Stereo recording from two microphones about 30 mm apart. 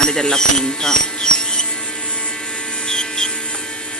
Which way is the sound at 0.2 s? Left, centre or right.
Left.